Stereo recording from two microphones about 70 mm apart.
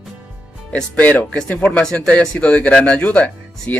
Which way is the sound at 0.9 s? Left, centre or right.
Centre.